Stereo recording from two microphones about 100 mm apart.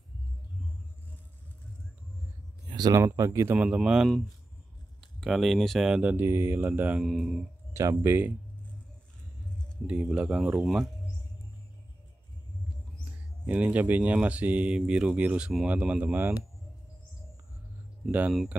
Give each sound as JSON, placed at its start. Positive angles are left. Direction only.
{"t": 2.7, "sound": "a sound", "side_deg": -40}
{"t": 3.0, "sound": "speech", "side_deg": -25}
{"t": 3.5, "sound": "speech", "side_deg": -10}
{"t": 5.2, "sound": "speech", "side_deg": 0}
{"t": 6.1, "sound": "speech", "side_deg": -25}
{"t": 7.1, "sound": "speech", "side_deg": -5}
{"t": 7.9, "sound": "speech", "side_deg": -20}
{"t": 9.8, "sound": "speech", "side_deg": -10}
{"t": 13.0, "sound": "speech", "side_deg": -15}